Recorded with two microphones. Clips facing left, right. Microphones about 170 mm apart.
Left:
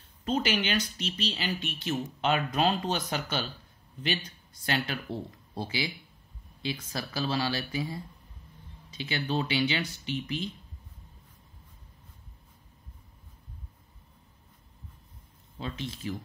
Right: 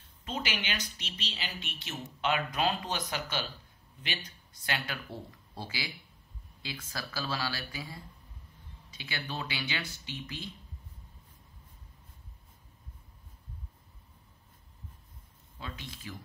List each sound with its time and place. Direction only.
0.2 s speech: 45° left (ahead or behind)
4.6 s speech: 25° left (ahead or behind)
15.6 s speech: 25° left (ahead or behind)